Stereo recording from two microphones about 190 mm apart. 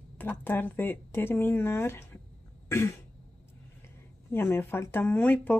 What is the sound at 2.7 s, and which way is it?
Throat clearing, 15° left (ahead or behind).